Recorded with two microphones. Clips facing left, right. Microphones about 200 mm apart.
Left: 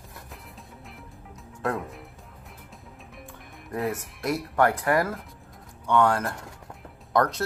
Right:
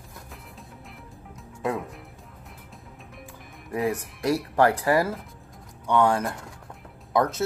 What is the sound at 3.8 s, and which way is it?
Speech, centre (ahead or behind).